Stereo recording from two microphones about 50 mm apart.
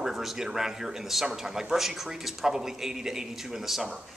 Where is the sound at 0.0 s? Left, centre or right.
Centre.